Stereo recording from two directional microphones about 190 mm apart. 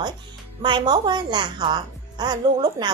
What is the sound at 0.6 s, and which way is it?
A woman's voice, 25° right (ahead or behind).